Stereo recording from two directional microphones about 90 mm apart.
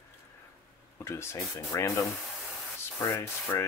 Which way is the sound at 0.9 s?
30° left (ahead or behind).